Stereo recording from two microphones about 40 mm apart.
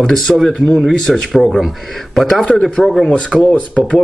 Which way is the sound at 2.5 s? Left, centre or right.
Centre.